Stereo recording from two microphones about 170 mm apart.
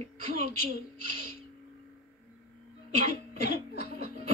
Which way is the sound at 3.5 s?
65° left (ahead or behind).